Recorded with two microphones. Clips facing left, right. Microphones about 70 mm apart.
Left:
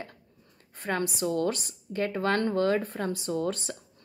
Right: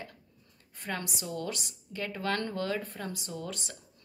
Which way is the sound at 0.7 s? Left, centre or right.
Left.